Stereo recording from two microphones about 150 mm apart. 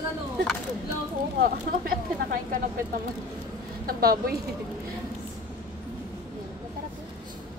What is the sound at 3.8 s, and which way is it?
Speech, 85° right.